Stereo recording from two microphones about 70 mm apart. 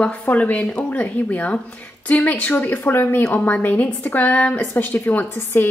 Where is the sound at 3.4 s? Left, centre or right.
Left.